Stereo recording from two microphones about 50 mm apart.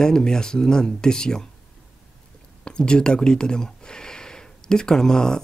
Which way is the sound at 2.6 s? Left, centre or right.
Centre.